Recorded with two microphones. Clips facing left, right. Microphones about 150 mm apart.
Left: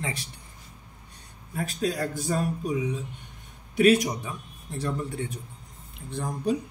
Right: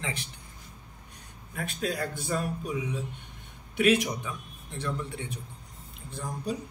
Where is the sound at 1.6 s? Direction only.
40° left (ahead or behind).